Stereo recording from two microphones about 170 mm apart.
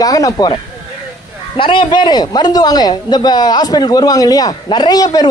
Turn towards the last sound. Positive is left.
turn(degrees=25)  # may be behind; listen again after turning